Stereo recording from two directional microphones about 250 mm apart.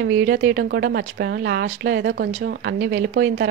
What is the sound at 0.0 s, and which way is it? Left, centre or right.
A woman's voice, right.